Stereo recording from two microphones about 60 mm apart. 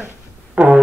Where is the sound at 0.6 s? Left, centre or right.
Right.